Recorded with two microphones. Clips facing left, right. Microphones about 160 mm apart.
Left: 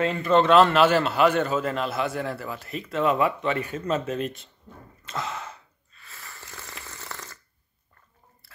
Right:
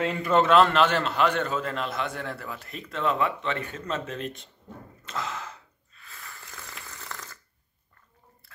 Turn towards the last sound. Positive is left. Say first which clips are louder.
# left 1 dB
turn(degrees=0)  # may be behind; listen again after turning